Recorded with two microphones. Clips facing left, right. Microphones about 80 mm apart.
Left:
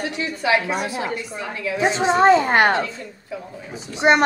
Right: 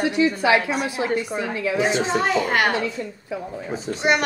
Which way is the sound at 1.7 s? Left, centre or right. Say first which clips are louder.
Left 4 dB; left.